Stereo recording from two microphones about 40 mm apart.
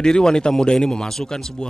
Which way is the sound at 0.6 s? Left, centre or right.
Centre.